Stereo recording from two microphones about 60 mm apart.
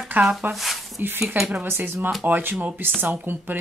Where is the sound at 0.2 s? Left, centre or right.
Right.